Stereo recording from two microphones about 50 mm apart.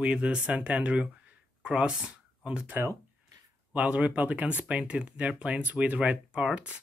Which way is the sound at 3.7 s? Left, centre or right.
Right.